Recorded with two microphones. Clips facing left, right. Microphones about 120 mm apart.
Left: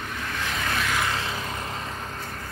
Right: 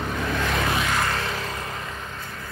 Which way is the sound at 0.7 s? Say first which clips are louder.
Right 2 dB; 10° right (ahead or behind).